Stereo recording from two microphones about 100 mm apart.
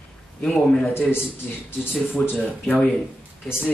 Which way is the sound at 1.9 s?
Centre (ahead or behind).